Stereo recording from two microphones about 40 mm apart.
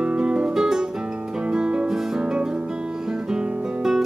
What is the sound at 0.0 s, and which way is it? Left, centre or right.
Music, right.